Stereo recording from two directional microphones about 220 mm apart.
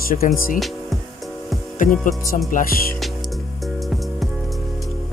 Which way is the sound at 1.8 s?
35° left (ahead or behind).